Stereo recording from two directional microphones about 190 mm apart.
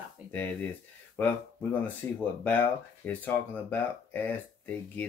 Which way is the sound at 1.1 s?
10° left (ahead or behind).